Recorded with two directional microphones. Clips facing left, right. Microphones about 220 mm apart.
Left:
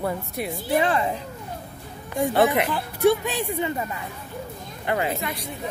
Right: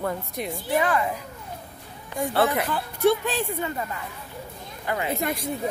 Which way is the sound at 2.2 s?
20° left (ahead or behind).